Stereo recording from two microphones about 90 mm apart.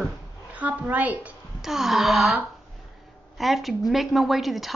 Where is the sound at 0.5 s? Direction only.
15° right (ahead or behind).